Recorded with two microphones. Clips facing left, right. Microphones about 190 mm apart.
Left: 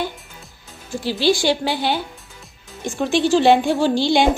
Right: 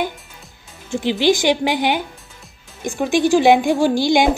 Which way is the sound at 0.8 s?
20° right (ahead or behind).